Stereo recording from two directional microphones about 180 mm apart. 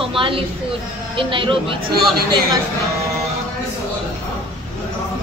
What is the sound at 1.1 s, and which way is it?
Speech, 30° right (ahead or behind).